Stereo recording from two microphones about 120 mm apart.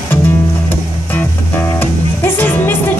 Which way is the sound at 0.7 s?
15° left (ahead or behind).